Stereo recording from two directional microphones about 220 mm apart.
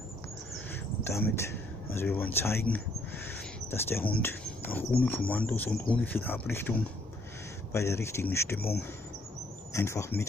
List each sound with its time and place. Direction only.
1.0 s speech: 10° left (ahead or behind)
7.7 s speech: 10° left (ahead or behind)
9.7 s speech: 15° left (ahead or behind)